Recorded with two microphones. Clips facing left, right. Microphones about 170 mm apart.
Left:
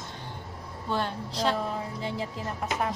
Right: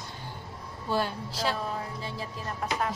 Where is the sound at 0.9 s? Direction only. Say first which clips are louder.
Right 1 dB; 5° right (ahead or behind).